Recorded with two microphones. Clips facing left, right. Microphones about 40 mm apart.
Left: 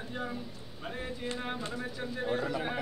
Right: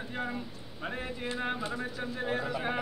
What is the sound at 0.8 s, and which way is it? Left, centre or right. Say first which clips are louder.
A man's voice: right 2 dB; right.